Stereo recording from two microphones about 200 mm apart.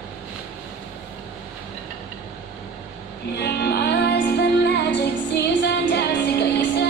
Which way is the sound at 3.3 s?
55° left (ahead or behind).